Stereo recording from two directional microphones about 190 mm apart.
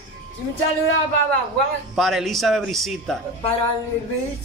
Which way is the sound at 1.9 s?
Centre (ahead or behind).